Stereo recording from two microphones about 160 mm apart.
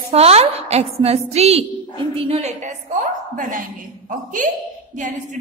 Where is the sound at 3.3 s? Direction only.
55° right (ahead or behind).